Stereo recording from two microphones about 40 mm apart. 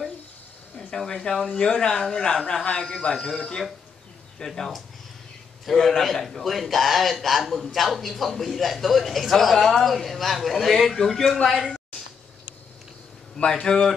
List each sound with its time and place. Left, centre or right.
0.9 s speech: centre
1.5 s a man's voice: left
4.5 s a man's voice: centre
11.5 s a sound: centre
13.4 s speech: centre